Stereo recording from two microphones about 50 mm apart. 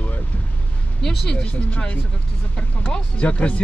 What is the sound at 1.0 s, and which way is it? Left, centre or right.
Speech, centre.